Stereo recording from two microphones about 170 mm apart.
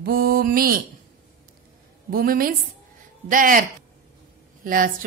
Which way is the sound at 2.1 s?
60° right (ahead or behind).